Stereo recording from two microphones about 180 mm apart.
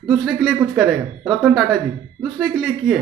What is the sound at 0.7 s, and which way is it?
A man's voice, centre (ahead or behind).